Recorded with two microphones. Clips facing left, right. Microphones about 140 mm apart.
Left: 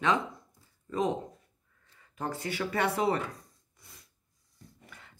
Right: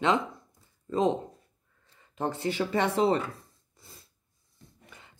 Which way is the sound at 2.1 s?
25° right (ahead or behind).